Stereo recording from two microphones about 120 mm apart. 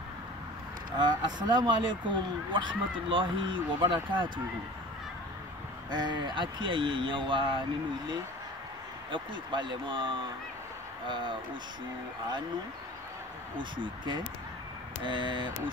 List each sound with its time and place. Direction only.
0.9 s speech: 40° right (ahead or behind)
5.9 s speech: 40° right (ahead or behind)
9.1 s speech: 40° right (ahead or behind)
13.6 s speech: 40° right (ahead or behind)